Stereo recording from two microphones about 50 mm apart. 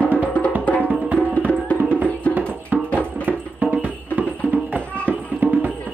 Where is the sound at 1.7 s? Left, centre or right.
Right.